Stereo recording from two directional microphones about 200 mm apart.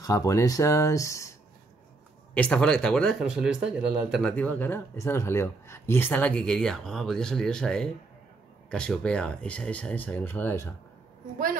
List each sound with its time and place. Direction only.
0.0 s speech: 15° left (ahead or behind)
2.3 s speech: 5° left (ahead or behind)